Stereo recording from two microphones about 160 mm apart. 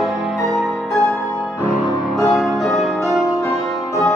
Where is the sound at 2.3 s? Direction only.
Centre (ahead or behind).